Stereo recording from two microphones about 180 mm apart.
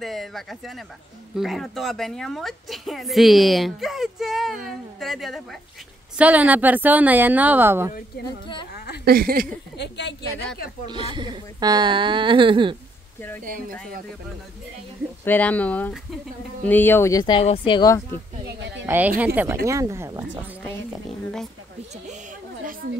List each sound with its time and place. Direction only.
0.0 s a woman's voice: centre (ahead or behind)
8.7 s a sound: 65° left (ahead or behind)
9.0 s a woman's voice: 55° right (ahead or behind)
9.8 s a woman's voice: 70° left (ahead or behind)
10.9 s speech: 25° right (ahead or behind)
13.4 s speech: 50° right (ahead or behind)
15.2 s speech: 10° left (ahead or behind)
18.4 s speech: 75° right (ahead or behind)
18.9 s a woman's voice: 10° right (ahead or behind)